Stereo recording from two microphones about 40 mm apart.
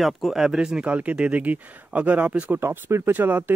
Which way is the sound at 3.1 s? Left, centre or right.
Right.